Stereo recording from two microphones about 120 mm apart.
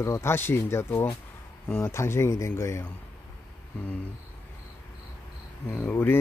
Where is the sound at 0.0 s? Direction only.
25° left (ahead or behind).